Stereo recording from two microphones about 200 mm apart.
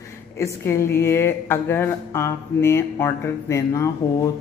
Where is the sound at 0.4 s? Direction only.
15° left (ahead or behind).